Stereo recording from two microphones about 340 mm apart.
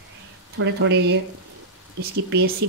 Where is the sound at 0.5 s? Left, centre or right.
Right.